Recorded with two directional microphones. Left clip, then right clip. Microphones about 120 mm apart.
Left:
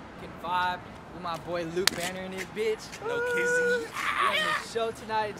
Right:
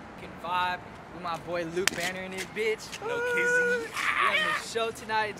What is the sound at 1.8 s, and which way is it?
Speech, 20° left (ahead or behind).